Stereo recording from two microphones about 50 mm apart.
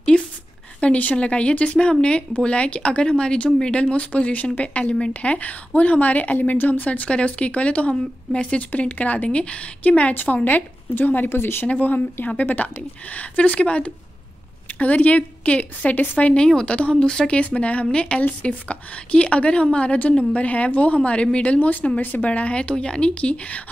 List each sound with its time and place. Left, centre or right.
0.1 s a sound: left
0.7 s a woman's voice: left
10.1 s a woman's voice: left
11.2 s speech: left
11.6 s a woman's voice: left
14.7 s a woman's voice: left